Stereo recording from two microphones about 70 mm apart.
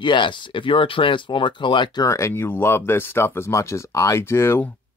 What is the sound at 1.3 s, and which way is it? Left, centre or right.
Speech, left.